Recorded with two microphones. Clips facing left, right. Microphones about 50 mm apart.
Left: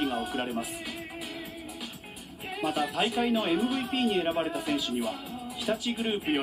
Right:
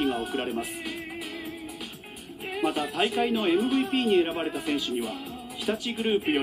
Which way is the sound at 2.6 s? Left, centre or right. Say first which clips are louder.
Right 2 dB; centre.